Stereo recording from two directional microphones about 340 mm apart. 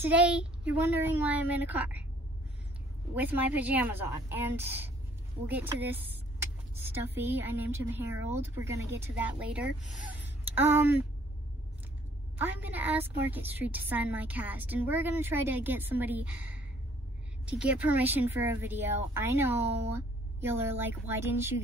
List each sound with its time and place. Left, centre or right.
0.0 s a woman's voice: centre
3.2 s a woman's voice: centre
12.4 s a woman's voice: centre